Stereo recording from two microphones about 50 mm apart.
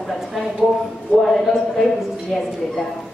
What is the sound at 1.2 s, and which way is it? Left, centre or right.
Speech, centre.